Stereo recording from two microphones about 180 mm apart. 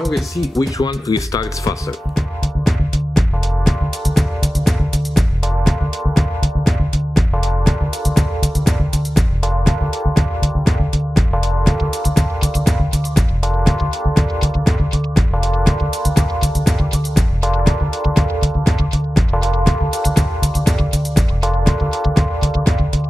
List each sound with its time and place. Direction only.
0.0 s speech: centre (ahead or behind)
0.6 s speech: 20° left (ahead or behind)
3.2 s music: centre (ahead or behind)
5.7 s music: centre (ahead or behind)